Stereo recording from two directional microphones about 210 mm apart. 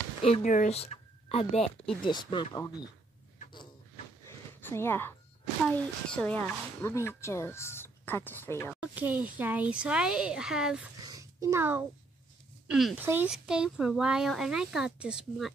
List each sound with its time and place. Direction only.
0.2 s speech: 35° left (ahead or behind)
4.6 s speech: 10° left (ahead or behind)
8.8 s speech: 5° right (ahead or behind)
11.1 s a sound: 15° right (ahead or behind)
12.6 s speech: 5° right (ahead or behind)